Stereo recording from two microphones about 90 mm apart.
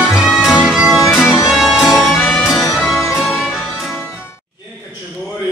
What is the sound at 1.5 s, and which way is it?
Music, 5° right (ahead or behind).